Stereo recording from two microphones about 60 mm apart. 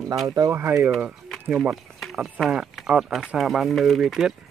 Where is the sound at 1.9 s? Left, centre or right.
Centre.